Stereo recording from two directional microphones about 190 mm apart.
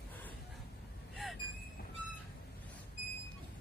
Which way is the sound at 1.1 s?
Centre (ahead or behind).